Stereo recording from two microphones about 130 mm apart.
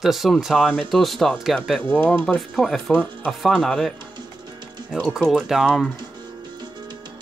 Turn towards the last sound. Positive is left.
turn(degrees=-5)  # may be behind; listen again after turning